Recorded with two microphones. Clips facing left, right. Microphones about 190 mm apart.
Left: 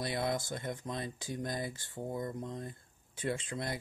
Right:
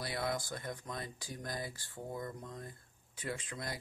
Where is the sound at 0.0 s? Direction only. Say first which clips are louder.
Left 3 dB; 25° left (ahead or behind).